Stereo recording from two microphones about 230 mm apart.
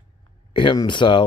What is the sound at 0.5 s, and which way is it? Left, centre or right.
Speech, centre.